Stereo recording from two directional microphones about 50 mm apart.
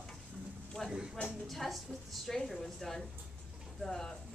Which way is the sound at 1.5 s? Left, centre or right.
Centre.